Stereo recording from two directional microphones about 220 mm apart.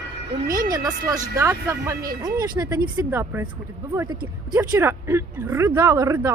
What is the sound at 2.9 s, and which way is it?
Speech, 10° right (ahead or behind).